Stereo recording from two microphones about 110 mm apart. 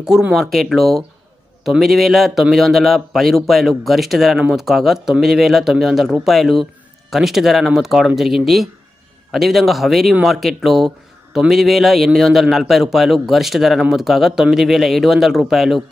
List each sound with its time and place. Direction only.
0.0 s a man's voice: 5° right (ahead or behind)